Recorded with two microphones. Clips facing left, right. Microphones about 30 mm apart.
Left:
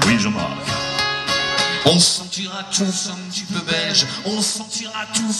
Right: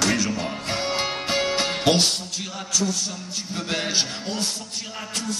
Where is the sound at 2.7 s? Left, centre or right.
Left.